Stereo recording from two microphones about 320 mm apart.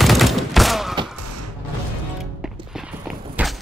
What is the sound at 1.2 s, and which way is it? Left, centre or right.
Music, right.